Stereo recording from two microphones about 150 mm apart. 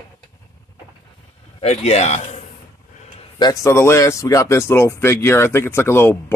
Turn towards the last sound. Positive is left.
turn(degrees=15)  # may be behind; listen again after turning